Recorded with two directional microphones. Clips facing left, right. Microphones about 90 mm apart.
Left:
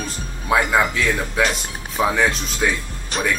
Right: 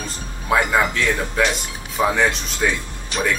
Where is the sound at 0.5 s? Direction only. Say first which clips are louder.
Even; centre (ahead or behind).